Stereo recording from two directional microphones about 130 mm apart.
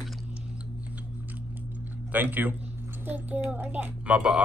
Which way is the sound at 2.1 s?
15° right (ahead or behind).